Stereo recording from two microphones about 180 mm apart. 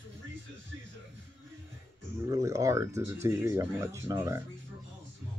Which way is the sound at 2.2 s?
20° right (ahead or behind).